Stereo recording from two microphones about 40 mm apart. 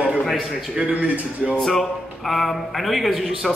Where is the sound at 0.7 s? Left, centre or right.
Right.